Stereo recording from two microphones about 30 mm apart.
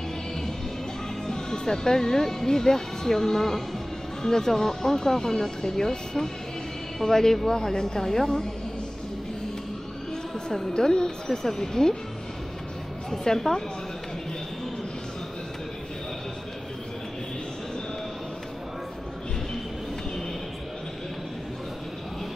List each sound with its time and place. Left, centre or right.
1.2 s speech: centre
10.7 s a woman's voice: left
13.4 s speech: centre